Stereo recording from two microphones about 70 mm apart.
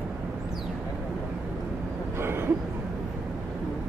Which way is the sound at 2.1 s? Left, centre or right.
Right.